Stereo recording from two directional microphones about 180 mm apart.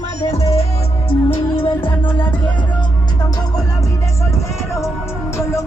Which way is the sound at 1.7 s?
10° left (ahead or behind).